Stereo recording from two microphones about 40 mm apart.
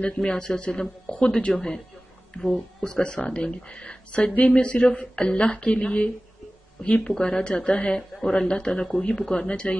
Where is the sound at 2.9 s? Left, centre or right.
Left.